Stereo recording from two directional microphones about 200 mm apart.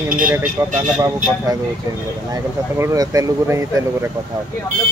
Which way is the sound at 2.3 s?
15° right (ahead or behind).